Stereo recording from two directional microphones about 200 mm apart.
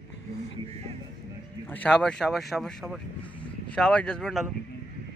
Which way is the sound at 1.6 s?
5° left (ahead or behind).